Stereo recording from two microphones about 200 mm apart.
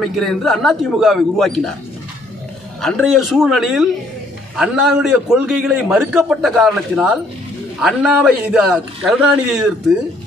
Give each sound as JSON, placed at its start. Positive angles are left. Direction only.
{"t": 0.0, "sound": "a man's voice", "side_deg": 0}
{"t": 3.1, "sound": "a man's voice", "side_deg": 0}